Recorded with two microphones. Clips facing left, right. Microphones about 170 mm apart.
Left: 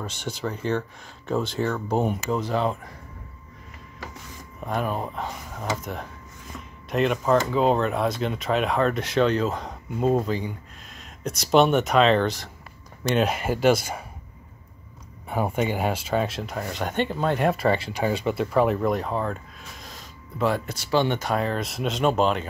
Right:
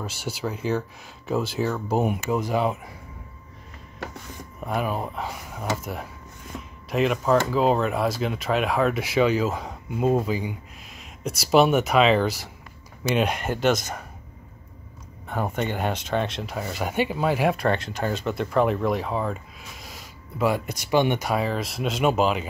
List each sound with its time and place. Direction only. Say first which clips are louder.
0.0 s speech: even; 5° right (ahead or behind)
4.6 s speech: even; 5° right (ahead or behind)
6.5 s a sound: right 4 dB; 30° right (ahead or behind)
6.9 s speech: even; centre (ahead or behind)
15.2 s speech: left 2 dB; 10° left (ahead or behind)